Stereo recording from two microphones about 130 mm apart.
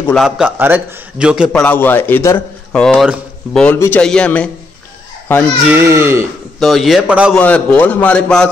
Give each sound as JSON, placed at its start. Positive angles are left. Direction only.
{"t": 0.1, "sound": "a man's voice", "side_deg": 0}
{"t": 0.6, "sound": "a man's voice", "side_deg": -15}
{"t": 1.5, "sound": "a man's voice", "side_deg": 10}
{"t": 2.8, "sound": "a man's voice", "side_deg": 5}
{"t": 5.7, "sound": "speech", "side_deg": -20}
{"t": 6.6, "sound": "a man's voice", "side_deg": 0}
{"t": 7.3, "sound": "a man's voice", "side_deg": 10}